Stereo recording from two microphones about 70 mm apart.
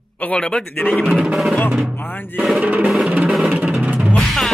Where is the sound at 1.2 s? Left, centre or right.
Centre.